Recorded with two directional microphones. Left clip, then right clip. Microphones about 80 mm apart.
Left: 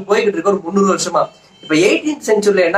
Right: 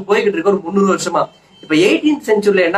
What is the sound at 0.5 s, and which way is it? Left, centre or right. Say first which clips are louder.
A man's voice: even; centre.